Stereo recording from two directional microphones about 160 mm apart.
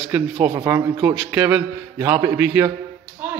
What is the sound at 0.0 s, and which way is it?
Speech, 10° right (ahead or behind).